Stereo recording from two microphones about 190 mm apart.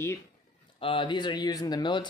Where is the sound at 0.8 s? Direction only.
25° left (ahead or behind).